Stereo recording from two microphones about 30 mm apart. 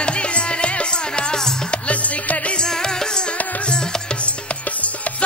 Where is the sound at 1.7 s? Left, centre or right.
Left.